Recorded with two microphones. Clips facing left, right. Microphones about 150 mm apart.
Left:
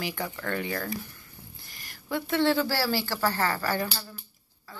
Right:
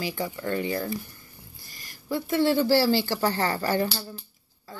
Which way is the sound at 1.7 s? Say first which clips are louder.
Even; 60° left (ahead or behind).